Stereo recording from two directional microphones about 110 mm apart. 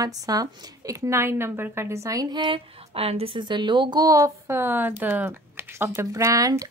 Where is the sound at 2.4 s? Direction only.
55° right (ahead or behind).